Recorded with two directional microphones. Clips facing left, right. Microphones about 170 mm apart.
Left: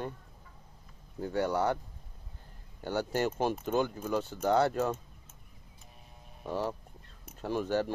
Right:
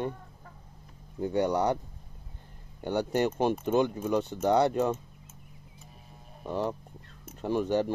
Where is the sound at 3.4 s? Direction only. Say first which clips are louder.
Right 4 dB; 5° left (ahead or behind).